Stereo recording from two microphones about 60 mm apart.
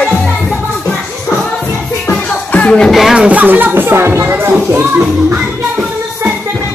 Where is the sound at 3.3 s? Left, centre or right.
Right.